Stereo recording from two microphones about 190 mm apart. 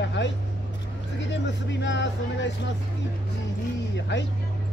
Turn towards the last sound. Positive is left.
turn(degrees=70)  # may be behind; listen again after turning